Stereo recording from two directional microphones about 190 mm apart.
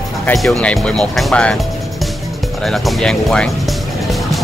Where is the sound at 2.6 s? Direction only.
Centre (ahead or behind).